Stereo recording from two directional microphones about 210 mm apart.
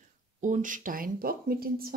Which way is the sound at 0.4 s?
35° right (ahead or behind).